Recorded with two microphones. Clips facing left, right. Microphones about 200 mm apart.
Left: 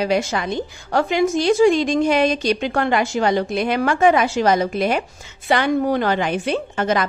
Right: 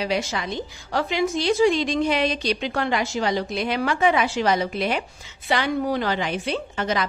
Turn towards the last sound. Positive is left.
turn(degrees=50)  # may be behind; listen again after turning